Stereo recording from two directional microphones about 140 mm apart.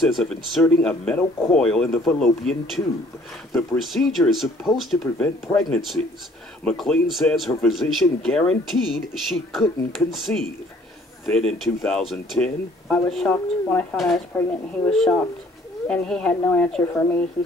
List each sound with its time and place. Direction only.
0.0 s speech: centre (ahead or behind)
5.0 s a woman's voice: 15° left (ahead or behind)
5.6 s speech: centre (ahead or behind)
13.3 s a woman's voice: 15° left (ahead or behind)
13.9 s a woman's voice: centre (ahead or behind)